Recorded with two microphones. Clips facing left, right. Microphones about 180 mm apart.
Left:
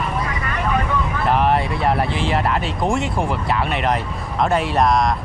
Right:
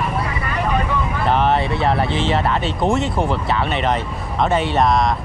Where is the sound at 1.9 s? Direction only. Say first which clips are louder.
Even; centre (ahead or behind).